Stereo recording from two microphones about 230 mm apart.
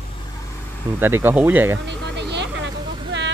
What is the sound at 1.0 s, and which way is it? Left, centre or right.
Speech, centre.